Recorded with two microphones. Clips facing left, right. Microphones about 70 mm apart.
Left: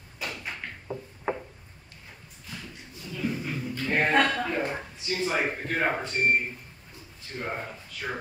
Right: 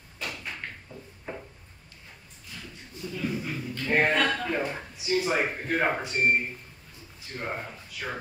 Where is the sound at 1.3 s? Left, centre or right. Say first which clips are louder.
Left 8 dB; left.